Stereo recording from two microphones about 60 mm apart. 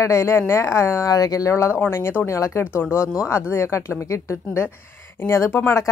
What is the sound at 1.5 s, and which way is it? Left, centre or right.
Speech, left.